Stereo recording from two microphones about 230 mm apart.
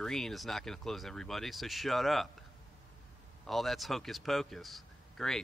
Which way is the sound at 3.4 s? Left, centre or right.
Centre.